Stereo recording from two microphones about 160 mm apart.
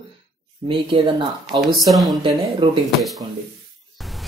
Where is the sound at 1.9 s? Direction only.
Centre (ahead or behind).